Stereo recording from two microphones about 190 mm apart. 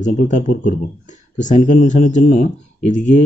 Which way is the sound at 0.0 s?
45° left (ahead or behind).